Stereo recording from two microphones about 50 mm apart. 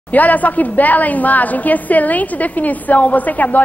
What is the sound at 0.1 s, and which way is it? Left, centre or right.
A woman's voice, left.